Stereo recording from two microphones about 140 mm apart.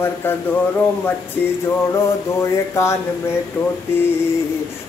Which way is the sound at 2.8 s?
20° left (ahead or behind).